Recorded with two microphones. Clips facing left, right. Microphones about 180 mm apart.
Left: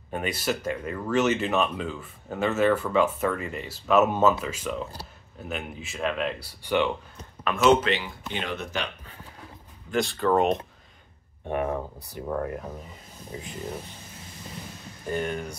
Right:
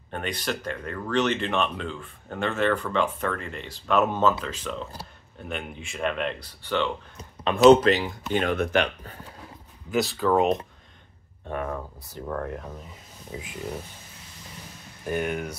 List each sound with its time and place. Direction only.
0.1 s speech: 5° left (ahead or behind)
6.6 s speech: 15° left (ahead or behind)
7.4 s speech: 35° right (ahead or behind); by 9.1 s 55° right (ahead or behind)
9.8 s speech: 5° right (ahead or behind)
11.4 s speech: 20° left (ahead or behind); by 13.5 s centre (ahead or behind)
15.0 s speech: 15° right (ahead or behind)